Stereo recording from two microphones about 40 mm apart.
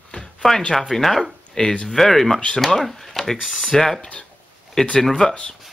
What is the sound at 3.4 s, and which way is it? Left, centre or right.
Speech, centre.